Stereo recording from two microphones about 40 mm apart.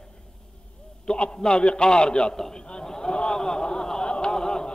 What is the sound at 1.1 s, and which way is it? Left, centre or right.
A man's voice, left.